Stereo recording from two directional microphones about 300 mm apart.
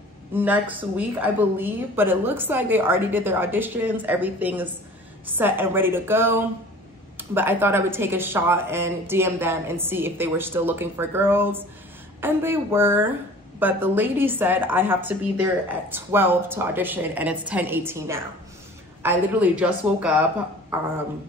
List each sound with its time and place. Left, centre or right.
0.3 s a woman's voice: centre